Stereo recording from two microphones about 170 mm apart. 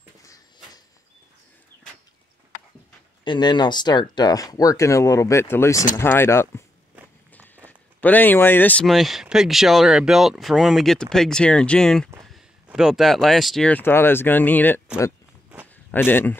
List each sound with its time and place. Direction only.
3.3 s speech: 25° left (ahead or behind)
8.0 s speech: 10° left (ahead or behind)
15.9 s speech: 10° left (ahead or behind)